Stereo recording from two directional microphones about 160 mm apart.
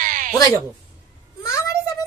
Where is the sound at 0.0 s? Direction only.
55° right (ahead or behind).